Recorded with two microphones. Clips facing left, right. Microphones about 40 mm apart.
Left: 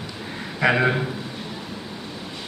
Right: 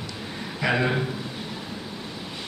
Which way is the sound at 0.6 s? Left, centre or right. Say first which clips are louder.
Left 4 dB; centre.